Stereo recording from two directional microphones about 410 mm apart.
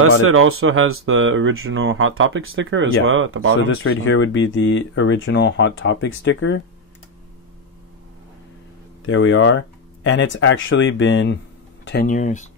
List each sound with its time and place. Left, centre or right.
0.2 s speech: right
3.6 s speech: left
9.0 s speech: left